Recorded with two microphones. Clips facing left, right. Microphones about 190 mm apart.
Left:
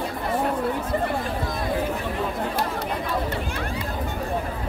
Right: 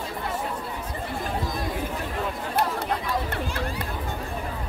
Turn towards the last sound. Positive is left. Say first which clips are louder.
# left 1 dB
turn(degrees=-55)  # may be behind; listen again after turning